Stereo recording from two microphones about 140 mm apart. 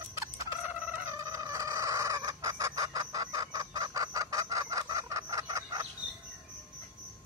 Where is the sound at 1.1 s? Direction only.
25° right (ahead or behind).